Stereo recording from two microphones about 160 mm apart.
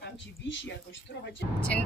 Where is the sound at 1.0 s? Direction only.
90° left.